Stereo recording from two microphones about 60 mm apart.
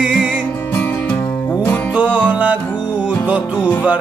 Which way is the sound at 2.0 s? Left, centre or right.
Right.